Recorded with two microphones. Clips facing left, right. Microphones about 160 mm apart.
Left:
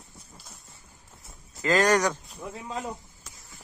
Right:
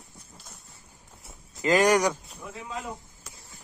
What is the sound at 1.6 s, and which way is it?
Speech, 15° right (ahead or behind).